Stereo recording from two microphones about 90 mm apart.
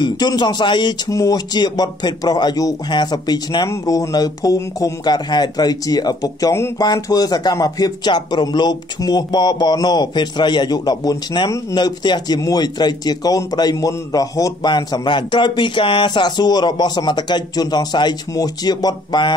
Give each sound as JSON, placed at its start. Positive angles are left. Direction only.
{"t": 0.0, "sound": "speech", "side_deg": 55}
{"t": 1.1, "sound": "speech", "side_deg": 35}
{"t": 1.5, "sound": "a man's voice", "side_deg": 50}
{"t": 3.6, "sound": "speech", "side_deg": 35}
{"t": 5.0, "sound": "a man's voice", "side_deg": 50}